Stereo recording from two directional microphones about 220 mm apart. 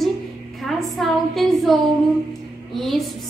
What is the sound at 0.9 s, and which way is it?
A woman's voice, centre (ahead or behind).